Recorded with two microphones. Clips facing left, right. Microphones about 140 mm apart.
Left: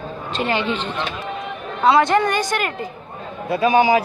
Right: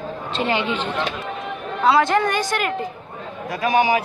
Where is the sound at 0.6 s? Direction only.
10° right (ahead or behind).